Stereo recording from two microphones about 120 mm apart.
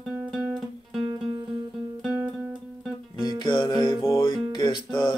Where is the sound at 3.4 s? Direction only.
40° left (ahead or behind).